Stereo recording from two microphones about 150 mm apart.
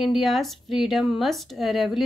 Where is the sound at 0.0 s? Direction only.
Centre (ahead or behind).